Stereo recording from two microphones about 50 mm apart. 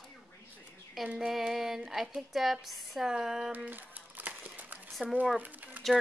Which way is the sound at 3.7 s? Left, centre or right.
Right.